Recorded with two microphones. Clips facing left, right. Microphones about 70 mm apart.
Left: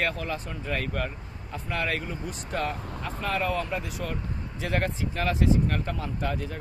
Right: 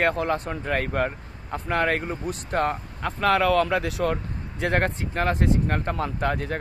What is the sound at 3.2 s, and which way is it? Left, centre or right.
Speech, right.